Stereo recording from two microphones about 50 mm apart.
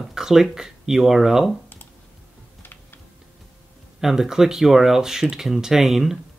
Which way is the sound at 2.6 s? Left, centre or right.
Left.